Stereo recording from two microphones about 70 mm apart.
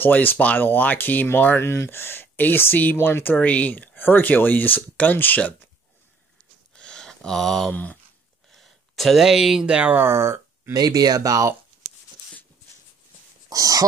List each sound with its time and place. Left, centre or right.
0.0 s speech: left
6.7 s a sound: centre
7.7 s speech: left
8.5 s a sound: centre
9.7 s speech: right
10.0 s speech: right
10.7 s speech: right
13.5 s speech: right